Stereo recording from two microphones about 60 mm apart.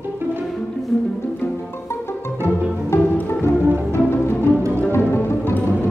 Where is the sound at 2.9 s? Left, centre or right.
Left.